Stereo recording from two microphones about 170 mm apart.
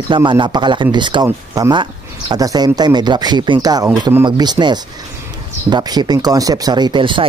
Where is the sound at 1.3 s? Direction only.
15° right (ahead or behind).